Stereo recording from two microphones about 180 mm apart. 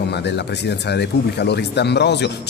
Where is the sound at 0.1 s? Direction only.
70° left (ahead or behind).